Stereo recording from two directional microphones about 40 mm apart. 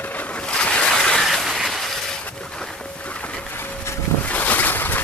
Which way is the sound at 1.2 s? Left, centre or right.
Centre.